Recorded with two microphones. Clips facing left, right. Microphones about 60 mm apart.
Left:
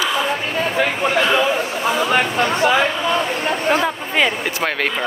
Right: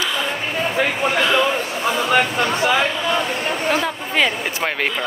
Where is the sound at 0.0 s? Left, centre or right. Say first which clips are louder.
Left 3 dB; centre.